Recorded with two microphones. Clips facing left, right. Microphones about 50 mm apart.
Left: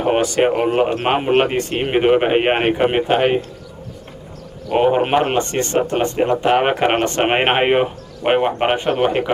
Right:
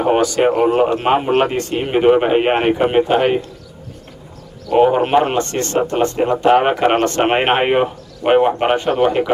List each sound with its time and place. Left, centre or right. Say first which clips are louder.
0.2 s speech: right 2 dB; left
4.8 s speech: left 1 dB; centre